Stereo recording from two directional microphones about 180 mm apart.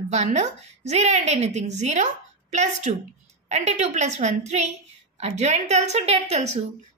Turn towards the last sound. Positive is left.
turn(degrees=-35)  # may be behind; listen again after turning